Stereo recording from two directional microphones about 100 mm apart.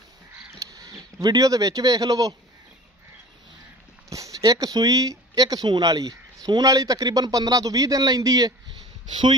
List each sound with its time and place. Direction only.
0.5 s speech: 35° right (ahead or behind)
4.1 s speech: 35° right (ahead or behind)